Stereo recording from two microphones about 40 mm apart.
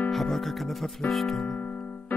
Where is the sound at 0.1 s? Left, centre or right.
Centre.